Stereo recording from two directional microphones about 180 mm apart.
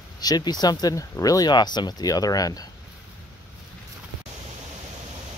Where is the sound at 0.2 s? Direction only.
20° left (ahead or behind).